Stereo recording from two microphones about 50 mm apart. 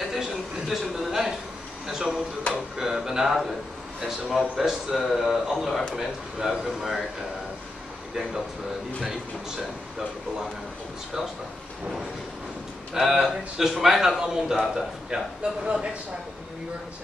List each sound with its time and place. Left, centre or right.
0.1 s a sound: centre
1.9 s speech: centre
8.1 s speech: centre
12.9 s speech: centre